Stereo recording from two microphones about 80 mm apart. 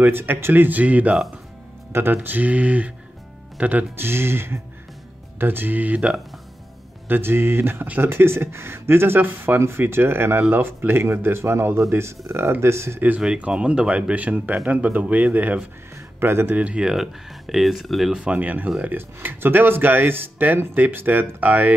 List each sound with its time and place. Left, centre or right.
0.0 s speech: right
1.9 s speech: right; by 6.2 s centre
7.1 s speech: right
13.0 s speech: centre
16.5 s speech: centre